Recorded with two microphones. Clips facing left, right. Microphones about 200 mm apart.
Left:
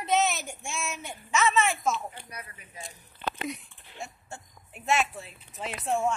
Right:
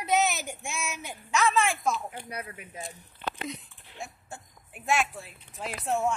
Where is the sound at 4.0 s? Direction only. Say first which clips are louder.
Even; centre (ahead or behind).